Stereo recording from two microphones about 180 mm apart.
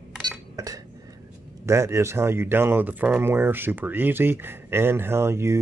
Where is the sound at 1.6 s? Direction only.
15° right (ahead or behind).